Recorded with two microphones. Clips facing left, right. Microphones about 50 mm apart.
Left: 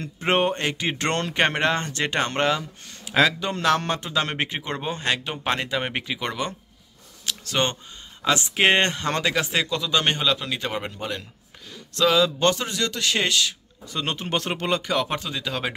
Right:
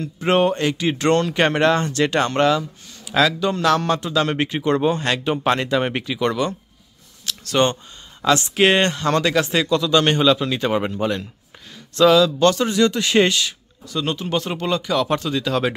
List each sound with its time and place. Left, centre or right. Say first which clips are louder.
0.0 s speech: right 4 dB; left; by 5.2 s centre
5.2 s speech: right 7 dB; centre
10.2 s speech: right 7 dB; centre
11.7 s a sound: right 7 dB; centre
12.2 s speech: right 4 dB; left
12.6 s a man's voice: right 7 dB; centre
13.8 s speech: right 4 dB; left
15.0 s speech: right 7 dB; centre